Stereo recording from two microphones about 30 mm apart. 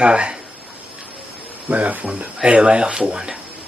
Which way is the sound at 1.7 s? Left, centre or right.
Right.